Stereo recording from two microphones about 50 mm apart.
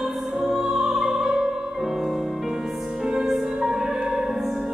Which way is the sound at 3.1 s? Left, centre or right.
Centre.